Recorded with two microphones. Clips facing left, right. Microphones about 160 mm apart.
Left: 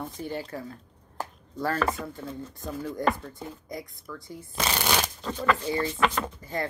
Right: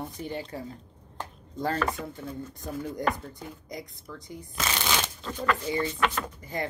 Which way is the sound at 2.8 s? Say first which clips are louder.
Left 3 dB; 20° right (ahead or behind).